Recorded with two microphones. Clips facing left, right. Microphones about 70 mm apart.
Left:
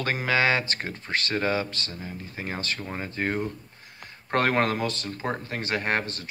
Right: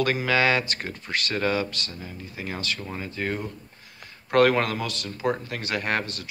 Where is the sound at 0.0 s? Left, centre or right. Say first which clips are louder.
Right 2 dB; left.